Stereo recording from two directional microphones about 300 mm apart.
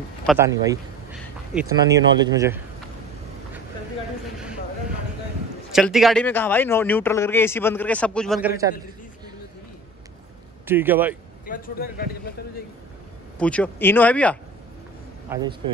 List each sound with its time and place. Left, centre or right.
0.3 s speech: centre
5.7 s a man's voice: centre
10.7 s speech: centre
11.4 s speech: left
13.4 s a man's voice: centre
15.2 s a man's voice: centre